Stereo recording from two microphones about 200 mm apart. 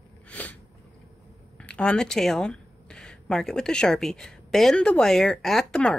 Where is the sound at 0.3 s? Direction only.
10° left (ahead or behind).